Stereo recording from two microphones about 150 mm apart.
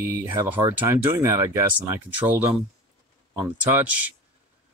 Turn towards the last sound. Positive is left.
turn(degrees=-10)  # may be behind; listen again after turning